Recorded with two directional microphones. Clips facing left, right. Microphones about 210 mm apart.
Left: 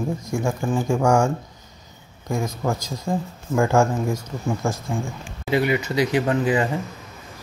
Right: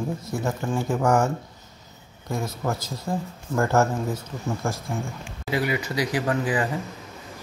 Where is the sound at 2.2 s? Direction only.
15° left (ahead or behind).